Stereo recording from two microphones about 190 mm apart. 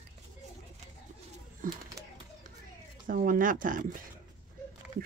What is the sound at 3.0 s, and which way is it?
Speech, 45° right (ahead or behind).